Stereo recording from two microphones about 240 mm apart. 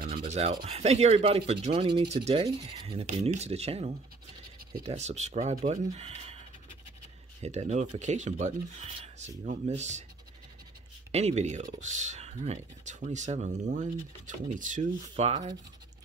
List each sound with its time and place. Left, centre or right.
0.0 s rub: right
0.7 s speech: right
7.4 s speech: right
11.1 s speech: right